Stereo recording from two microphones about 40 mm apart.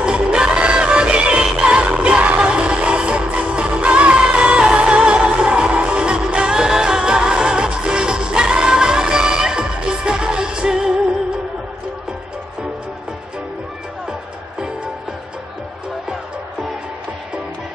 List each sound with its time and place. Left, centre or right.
0.0 s music: right